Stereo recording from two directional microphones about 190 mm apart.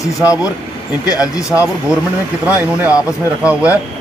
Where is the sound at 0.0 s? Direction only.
15° left (ahead or behind).